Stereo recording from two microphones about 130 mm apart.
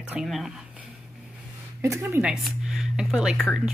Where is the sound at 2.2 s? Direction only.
5° right (ahead or behind).